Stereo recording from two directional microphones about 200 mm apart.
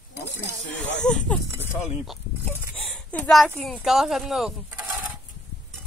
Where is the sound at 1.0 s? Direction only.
5° left (ahead or behind).